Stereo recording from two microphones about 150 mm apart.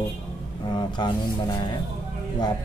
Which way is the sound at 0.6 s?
30° left (ahead or behind).